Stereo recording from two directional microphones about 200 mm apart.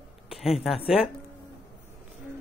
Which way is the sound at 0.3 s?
Centre (ahead or behind).